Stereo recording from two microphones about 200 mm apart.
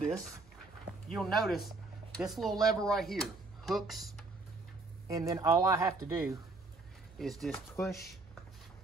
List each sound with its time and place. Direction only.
1.0 s speech: centre (ahead or behind)
5.0 s speech: 15° right (ahead or behind)
7.2 s speech: centre (ahead or behind)